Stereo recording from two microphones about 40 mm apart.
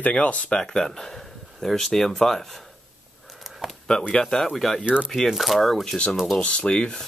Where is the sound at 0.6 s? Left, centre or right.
Centre.